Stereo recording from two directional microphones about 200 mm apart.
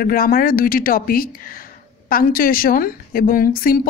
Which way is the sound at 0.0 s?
45° left (ahead or behind).